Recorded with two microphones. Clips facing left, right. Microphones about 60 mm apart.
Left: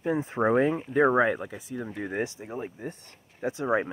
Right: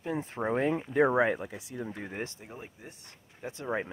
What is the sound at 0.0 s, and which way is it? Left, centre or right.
Speech, centre.